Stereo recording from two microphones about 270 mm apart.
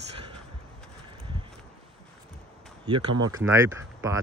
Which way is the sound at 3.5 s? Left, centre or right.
Centre.